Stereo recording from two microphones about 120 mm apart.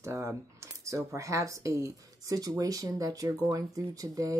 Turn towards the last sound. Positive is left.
turn(degrees=-30)  # may be behind; listen again after turning